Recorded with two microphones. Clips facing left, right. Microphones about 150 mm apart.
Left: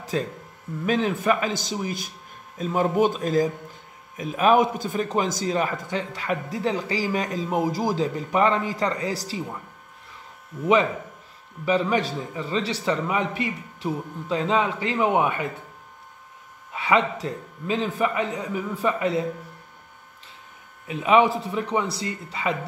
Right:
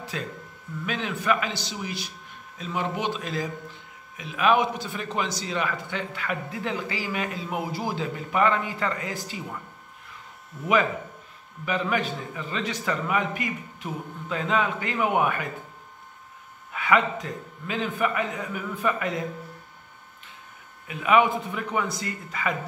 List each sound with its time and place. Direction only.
0.0 s a sound: 40° left (ahead or behind)
0.8 s a man's voice: 40° left (ahead or behind)
11.6 s a man's voice: 30° left (ahead or behind)
16.7 s a man's voice: 25° left (ahead or behind)
20.8 s speech: 30° left (ahead or behind)